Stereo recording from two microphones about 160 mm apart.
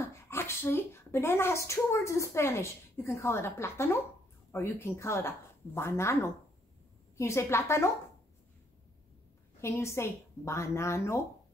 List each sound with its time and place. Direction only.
0.0 s speech: 15° left (ahead or behind)
9.6 s speech: 15° left (ahead or behind)